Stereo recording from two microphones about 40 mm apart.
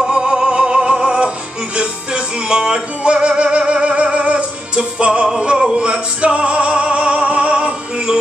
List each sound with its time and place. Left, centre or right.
0.0 s music: centre
7.5 s music: centre